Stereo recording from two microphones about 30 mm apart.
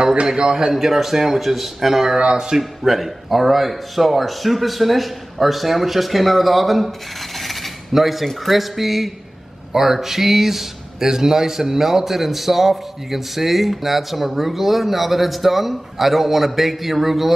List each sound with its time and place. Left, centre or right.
0.0 s a sound: right
0.4 s a man's voice: right
0.7 s a man's voice: centre
2.1 s a man's voice: right
2.5 s speech: centre
7.3 s cutlery: centre
8.5 s speech: centre